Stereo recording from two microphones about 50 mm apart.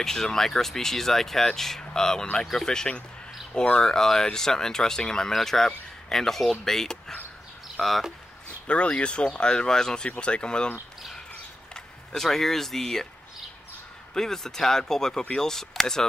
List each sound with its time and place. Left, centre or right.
0.0 s speech: centre
8.6 s speech: left
11.7 s speech: centre
14.1 s speech: centre